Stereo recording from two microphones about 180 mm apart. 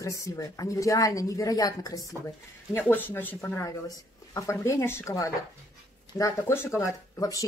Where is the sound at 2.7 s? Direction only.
10° left (ahead or behind).